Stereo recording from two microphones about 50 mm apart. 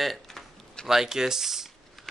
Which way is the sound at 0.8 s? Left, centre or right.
Centre.